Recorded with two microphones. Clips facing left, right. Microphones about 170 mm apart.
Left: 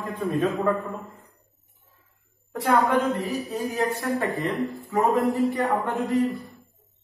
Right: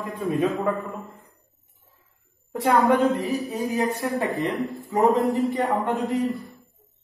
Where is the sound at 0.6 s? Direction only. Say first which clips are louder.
Left 1 dB; centre (ahead or behind).